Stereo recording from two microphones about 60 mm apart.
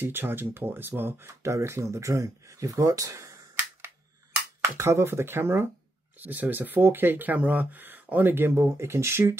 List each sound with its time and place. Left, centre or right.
0.0 s speech: right
4.6 s speech: right
6.1 s speech: right